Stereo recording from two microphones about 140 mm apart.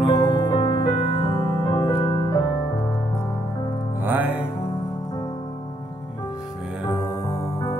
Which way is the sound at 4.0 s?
15° right (ahead or behind).